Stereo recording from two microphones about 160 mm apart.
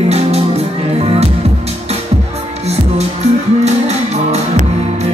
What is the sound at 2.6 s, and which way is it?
Music, 40° right (ahead or behind).